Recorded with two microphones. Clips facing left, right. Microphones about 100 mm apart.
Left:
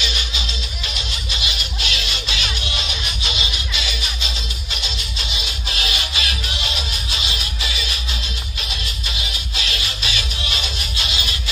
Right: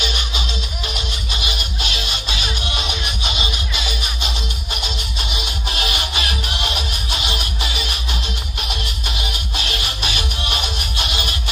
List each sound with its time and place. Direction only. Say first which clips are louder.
0.0 s music: right 2 dB; 50° right (ahead or behind)